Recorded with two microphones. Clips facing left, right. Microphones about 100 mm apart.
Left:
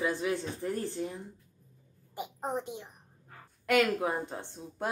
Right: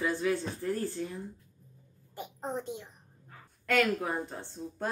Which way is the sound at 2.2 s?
15° left (ahead or behind).